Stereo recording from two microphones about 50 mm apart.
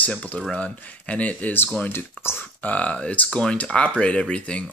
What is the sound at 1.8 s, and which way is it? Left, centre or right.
Speech, left.